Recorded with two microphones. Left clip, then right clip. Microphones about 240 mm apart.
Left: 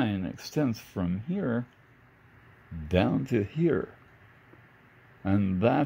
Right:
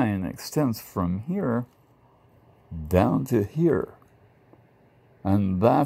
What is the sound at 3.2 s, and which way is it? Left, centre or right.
Speech, centre.